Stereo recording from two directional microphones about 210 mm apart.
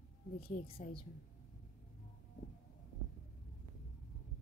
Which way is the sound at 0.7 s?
25° left (ahead or behind).